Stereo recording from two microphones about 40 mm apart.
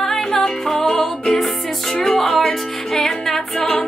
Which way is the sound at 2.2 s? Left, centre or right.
Centre.